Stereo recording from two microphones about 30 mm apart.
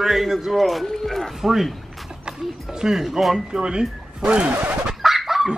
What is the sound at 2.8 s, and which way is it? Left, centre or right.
Speech, right.